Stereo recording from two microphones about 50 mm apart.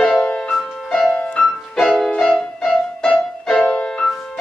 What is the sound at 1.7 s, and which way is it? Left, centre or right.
Music, centre.